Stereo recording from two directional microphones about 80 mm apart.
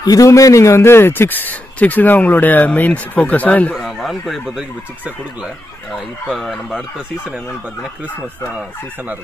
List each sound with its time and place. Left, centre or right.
0.0 s a man's voice: left; by 3.7 s centre
3.7 s speech: centre
6.2 s speech: centre